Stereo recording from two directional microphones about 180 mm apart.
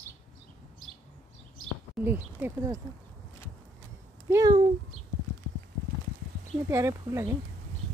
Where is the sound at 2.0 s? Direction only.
10° right (ahead or behind).